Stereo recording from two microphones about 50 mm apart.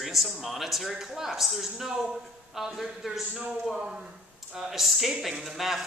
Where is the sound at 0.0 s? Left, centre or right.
Centre.